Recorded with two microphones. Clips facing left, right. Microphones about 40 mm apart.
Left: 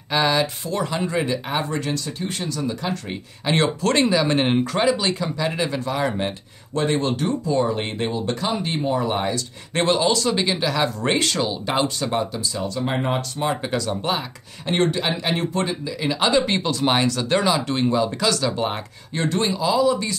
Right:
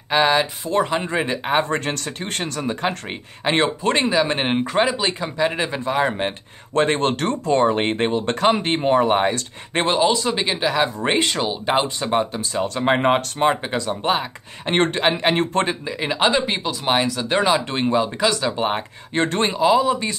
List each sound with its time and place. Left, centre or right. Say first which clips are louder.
0.1 s speech: right 3 dB; right
6.7 s speech: right 3 dB; right
9.8 s speech: right 1 dB; right
13.6 s speech: even; right
14.7 s speech: right 2 dB; right
16.4 s speech: left 1 dB; centre; by 20.2 s right